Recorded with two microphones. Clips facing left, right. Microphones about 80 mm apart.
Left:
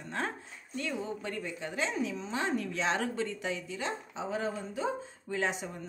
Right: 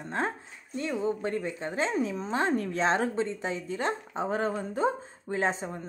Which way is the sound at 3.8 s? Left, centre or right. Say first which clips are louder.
Right 6 dB; right.